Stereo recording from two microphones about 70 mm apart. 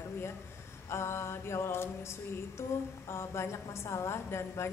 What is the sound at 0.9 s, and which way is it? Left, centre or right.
Music, left.